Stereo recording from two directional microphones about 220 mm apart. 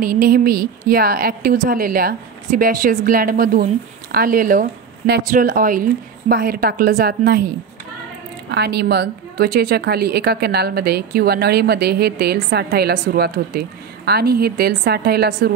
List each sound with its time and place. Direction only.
0.0 s a woman's voice: 40° right (ahead or behind)